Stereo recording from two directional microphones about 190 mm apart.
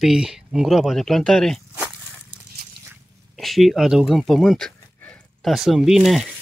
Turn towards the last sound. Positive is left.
turn(degrees=0)  # may be behind; listen again after turning